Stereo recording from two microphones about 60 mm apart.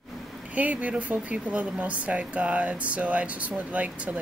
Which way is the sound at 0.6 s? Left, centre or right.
Right.